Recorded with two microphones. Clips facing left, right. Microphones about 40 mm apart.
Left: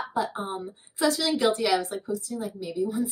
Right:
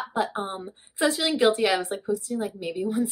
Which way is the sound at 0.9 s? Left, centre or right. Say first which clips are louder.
Right 1 dB; right.